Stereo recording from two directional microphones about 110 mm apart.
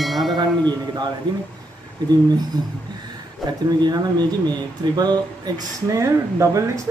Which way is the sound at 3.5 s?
40° right (ahead or behind).